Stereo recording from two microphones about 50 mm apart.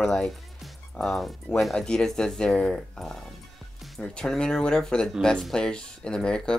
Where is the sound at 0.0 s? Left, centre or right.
Centre.